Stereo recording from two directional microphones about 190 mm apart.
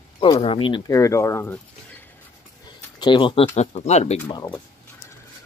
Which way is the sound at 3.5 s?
35° left (ahead or behind).